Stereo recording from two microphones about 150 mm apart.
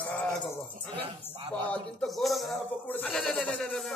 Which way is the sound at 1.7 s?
5° left (ahead or behind).